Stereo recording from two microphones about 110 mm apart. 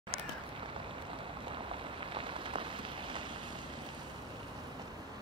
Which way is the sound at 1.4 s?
55° right (ahead or behind).